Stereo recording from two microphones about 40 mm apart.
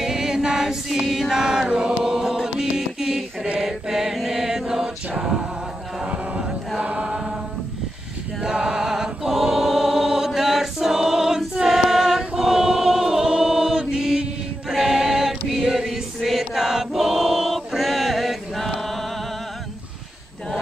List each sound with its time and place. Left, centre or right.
0.0 s choir: centre
2.2 s music: centre
3.6 s chant: centre
6.8 s chant: right
8.4 s chant: centre
9.3 s choir: centre
15.9 s choir: centre